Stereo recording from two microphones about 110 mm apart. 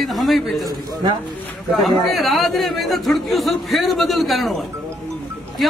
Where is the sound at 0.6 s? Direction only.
35° right (ahead or behind).